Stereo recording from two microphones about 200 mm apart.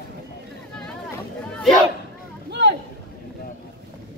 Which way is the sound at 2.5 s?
60° right (ahead or behind).